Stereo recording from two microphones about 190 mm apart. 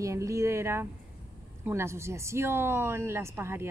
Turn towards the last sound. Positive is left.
turn(degrees=-10)  # may be behind; listen again after turning